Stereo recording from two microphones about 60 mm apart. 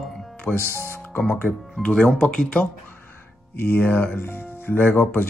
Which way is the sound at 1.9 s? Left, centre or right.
Centre.